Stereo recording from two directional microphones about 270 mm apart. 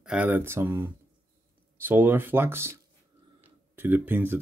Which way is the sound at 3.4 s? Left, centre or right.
Centre.